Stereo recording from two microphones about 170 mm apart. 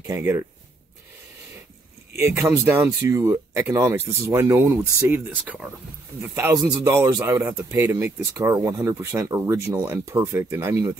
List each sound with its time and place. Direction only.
0.0 s speech: 15° right (ahead or behind)
2.1 s speech: 15° right (ahead or behind)
6.3 s speech: 20° right (ahead or behind)